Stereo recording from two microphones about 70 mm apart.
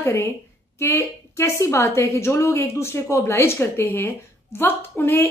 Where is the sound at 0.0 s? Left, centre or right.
Left.